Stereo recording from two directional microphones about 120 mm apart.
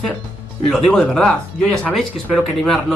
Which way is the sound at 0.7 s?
Centre (ahead or behind).